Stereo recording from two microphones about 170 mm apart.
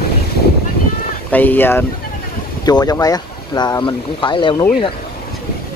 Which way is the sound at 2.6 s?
20° left (ahead or behind).